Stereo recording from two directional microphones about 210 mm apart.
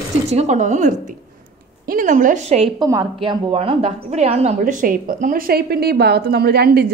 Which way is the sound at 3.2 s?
25° right (ahead or behind).